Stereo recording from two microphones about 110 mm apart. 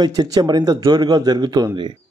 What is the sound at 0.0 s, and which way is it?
A man's voice, 35° right (ahead or behind).